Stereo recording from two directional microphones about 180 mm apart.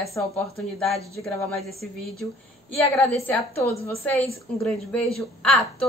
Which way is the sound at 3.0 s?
10° left (ahead or behind).